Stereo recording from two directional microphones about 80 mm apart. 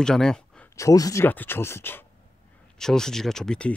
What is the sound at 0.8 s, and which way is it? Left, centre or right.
Speech, left.